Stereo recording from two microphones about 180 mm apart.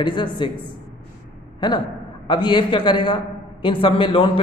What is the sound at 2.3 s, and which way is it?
A man's voice, 25° left (ahead or behind).